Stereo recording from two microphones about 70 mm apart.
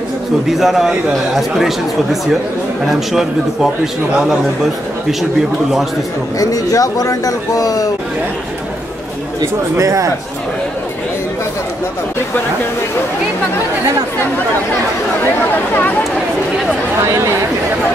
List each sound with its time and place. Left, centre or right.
0.5 s a man's voice: centre
2.8 s a man's voice: centre
6.4 s speech: left
9.8 s speech: right
17.0 s speech: right